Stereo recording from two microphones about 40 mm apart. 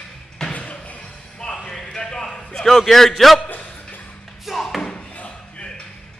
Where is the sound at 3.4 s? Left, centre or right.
Left.